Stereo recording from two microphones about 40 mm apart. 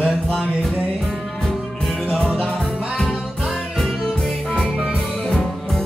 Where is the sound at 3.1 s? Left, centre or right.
Centre.